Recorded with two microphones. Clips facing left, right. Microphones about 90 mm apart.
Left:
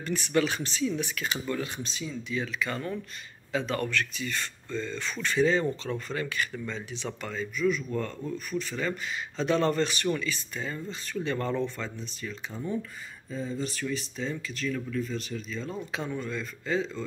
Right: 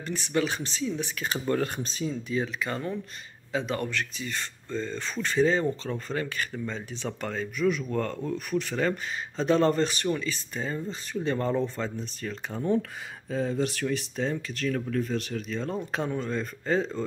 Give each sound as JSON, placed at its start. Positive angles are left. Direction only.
{"t": 0.0, "sound": "speech", "side_deg": -25}
{"t": 1.5, "sound": "speech", "side_deg": -40}
{"t": 2.4, "sound": "speech", "side_deg": -25}
{"t": 9.4, "sound": "speech", "side_deg": -35}
{"t": 12.3, "sound": "speech", "side_deg": -60}